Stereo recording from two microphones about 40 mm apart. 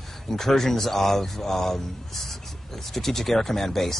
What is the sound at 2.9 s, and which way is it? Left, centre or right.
A man's voice, centre.